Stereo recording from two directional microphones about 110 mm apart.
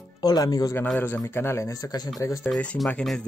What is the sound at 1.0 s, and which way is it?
Speech, 20° left (ahead or behind).